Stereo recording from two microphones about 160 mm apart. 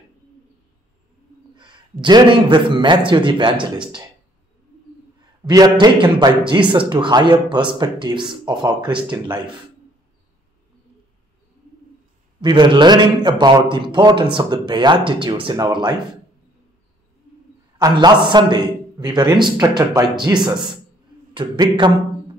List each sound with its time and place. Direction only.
1.6 s a man's voice: 30° right (ahead or behind)
5.4 s a man's voice: 25° right (ahead or behind)
12.4 s a man's voice: 30° right (ahead or behind)
17.7 s a man's voice: 25° right (ahead or behind)